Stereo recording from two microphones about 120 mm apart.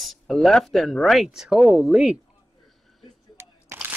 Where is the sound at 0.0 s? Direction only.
Centre (ahead or behind).